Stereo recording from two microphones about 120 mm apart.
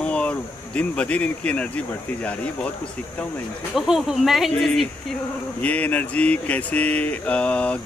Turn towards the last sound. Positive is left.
turn(degrees=10)  # may be behind; listen again after turning